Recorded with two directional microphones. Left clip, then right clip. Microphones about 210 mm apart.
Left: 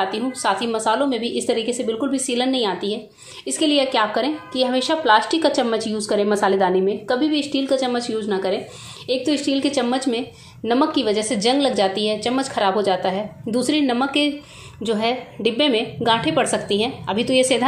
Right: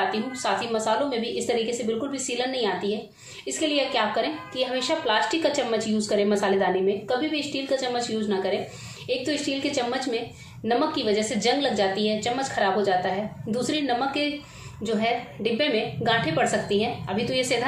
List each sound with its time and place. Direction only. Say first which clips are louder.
0.1 s a woman's voice: left 5 dB; 35° left (ahead or behind)